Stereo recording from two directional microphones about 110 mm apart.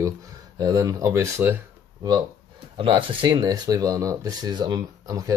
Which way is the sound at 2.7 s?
50° right (ahead or behind).